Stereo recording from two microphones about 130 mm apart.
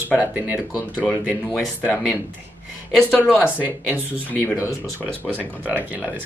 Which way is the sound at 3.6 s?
15° right (ahead or behind).